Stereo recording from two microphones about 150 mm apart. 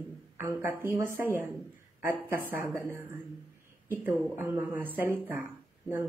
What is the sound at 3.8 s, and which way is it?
A woman's voice, 15° right (ahead or behind).